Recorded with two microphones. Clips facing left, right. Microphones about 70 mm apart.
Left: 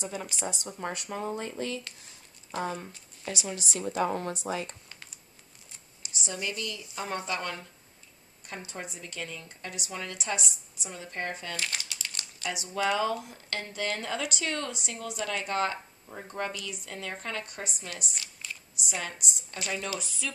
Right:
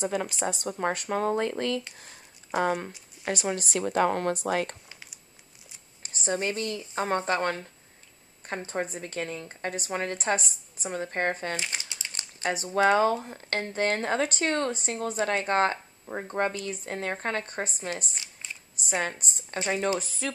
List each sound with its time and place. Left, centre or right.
0.0 s speech: right
3.3 s speech: right
6.0 s speech: right
11.5 s speech: right
18.2 s a sound: right
18.8 s speech: right